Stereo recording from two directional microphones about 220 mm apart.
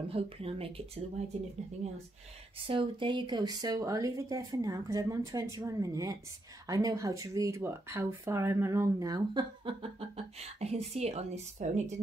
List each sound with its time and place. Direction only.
0.1 s speech: 25° right (ahead or behind)
2.6 s speech: 25° right (ahead or behind)